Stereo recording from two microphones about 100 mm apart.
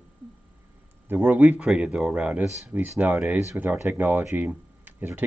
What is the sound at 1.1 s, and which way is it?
Speech, 20° right (ahead or behind).